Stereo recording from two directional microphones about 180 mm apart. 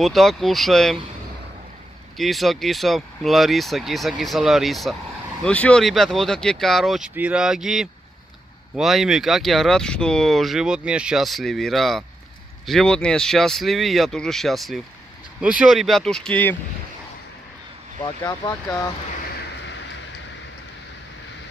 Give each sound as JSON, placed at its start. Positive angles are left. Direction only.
{"t": 0.0, "sound": "speech", "side_deg": 0}
{"t": 2.1, "sound": "speech", "side_deg": 0}
{"t": 18.0, "sound": "speech", "side_deg": 20}